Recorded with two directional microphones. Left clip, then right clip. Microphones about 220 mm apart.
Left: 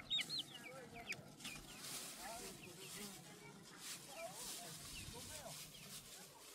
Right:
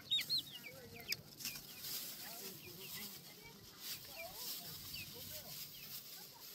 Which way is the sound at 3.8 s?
Centre (ahead or behind).